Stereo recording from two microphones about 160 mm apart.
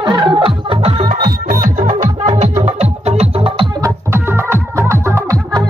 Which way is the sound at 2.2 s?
45° right (ahead or behind).